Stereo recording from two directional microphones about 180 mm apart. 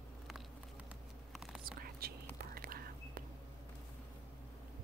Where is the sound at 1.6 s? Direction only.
55° right (ahead or behind).